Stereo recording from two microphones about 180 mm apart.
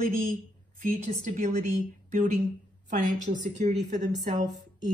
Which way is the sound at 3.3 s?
45° right (ahead or behind).